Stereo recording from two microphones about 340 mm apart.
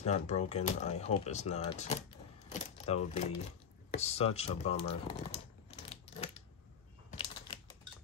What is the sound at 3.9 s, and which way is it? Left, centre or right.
Speech, centre.